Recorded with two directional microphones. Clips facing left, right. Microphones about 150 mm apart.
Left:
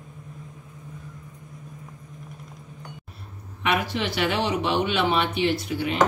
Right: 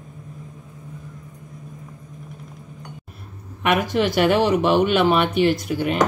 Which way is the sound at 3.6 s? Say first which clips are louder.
Right 6 dB; 50° right (ahead or behind).